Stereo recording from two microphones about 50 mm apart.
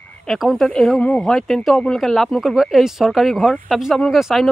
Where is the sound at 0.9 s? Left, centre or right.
Left.